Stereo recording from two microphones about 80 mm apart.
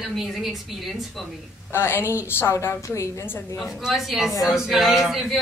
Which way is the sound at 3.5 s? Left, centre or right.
Centre.